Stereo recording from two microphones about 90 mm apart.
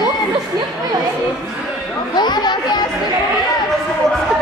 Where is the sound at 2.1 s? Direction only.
50° left (ahead or behind).